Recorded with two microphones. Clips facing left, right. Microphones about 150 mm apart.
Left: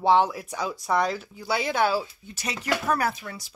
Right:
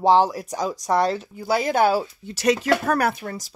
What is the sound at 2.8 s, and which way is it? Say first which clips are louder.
Speech: right 4 dB; 60° right (ahead or behind).